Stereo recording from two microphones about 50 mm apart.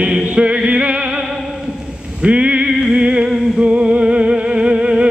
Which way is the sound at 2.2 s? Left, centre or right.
Right.